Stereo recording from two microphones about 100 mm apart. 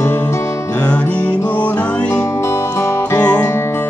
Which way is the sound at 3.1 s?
35° left (ahead or behind).